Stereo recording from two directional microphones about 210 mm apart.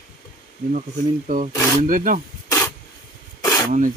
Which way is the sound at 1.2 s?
40° right (ahead or behind).